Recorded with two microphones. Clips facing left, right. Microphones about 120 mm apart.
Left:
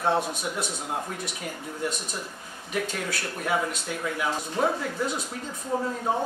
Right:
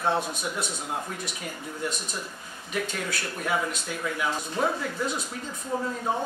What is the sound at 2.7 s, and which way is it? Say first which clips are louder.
Speech: left 1 dB; 45° left (ahead or behind).